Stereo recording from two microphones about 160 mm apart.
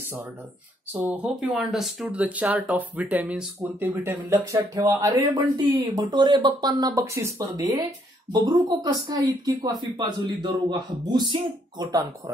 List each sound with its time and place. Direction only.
0.9 s speech: 5° right (ahead or behind); by 12.1 s 25° right (ahead or behind)